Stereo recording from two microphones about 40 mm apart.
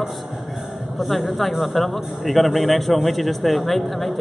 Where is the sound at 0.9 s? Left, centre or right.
Centre.